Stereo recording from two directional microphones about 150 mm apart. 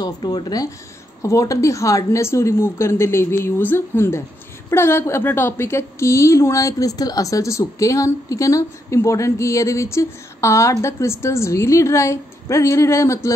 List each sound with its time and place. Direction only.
0.0 s a woman's voice: 30° left (ahead or behind)